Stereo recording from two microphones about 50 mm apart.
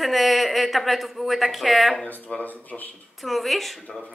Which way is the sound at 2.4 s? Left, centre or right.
Left.